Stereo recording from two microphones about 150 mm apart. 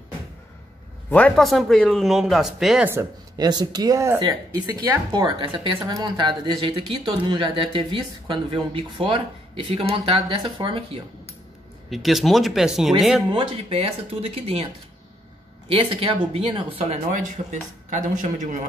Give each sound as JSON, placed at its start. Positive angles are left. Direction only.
{"t": 1.1, "sound": "speech", "side_deg": 5}
{"t": 2.9, "sound": "speech", "side_deg": -20}
{"t": 11.9, "sound": "speech", "side_deg": 0}
{"t": 13.3, "sound": "speech", "side_deg": -40}
{"t": 15.7, "sound": "speech", "side_deg": -35}
{"t": 17.1, "sound": "a man's voice", "side_deg": -55}